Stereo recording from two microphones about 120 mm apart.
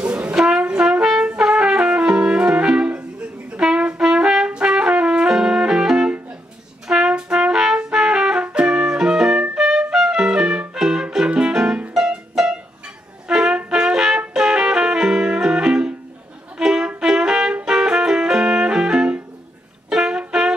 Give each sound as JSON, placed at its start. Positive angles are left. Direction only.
{"t": 0.0, "sound": "brass instrument", "side_deg": -10}
{"t": 3.5, "sound": "trumpet", "side_deg": -10}
{"t": 8.5, "sound": "music", "side_deg": -5}
{"t": 16.5, "sound": "brass instrument", "side_deg": -5}
{"t": 19.9, "sound": "music", "side_deg": -5}